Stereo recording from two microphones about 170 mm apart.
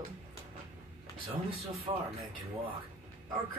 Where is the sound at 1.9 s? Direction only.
30° right (ahead or behind).